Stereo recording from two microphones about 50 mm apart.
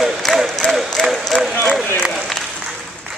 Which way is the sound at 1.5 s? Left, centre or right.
Left.